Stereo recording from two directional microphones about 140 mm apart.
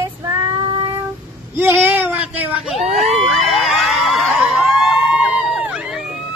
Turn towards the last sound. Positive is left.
turn(degrees=-5)  # may be behind; listen again after turning